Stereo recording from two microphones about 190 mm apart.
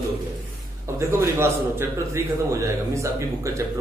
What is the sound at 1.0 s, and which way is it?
A man's voice, 15° right (ahead or behind).